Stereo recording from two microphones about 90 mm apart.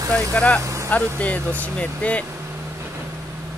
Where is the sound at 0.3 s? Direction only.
15° left (ahead or behind).